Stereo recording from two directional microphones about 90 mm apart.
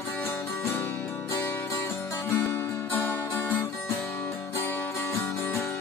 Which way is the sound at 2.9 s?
20° left (ahead or behind).